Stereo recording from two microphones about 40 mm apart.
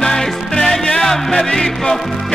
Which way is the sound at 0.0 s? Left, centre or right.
Centre.